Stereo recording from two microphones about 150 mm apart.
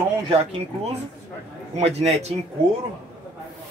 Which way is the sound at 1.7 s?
45° right (ahead or behind).